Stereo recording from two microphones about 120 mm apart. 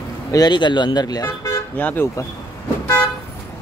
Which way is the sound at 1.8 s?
15° left (ahead or behind).